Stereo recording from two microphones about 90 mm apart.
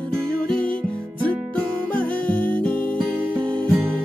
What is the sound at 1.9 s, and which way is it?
Music, 20° left (ahead or behind).